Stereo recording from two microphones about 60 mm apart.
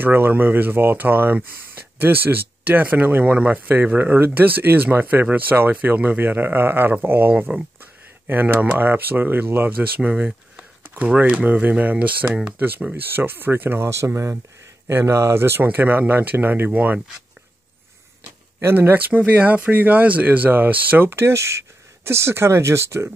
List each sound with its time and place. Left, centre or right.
0.0 s speech: right
13.8 s speech: right
15.6 s speech: right
18.6 s speech: right
21.1 s speech: right